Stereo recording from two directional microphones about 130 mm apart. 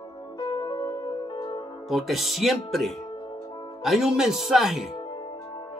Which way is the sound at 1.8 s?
Centre (ahead or behind).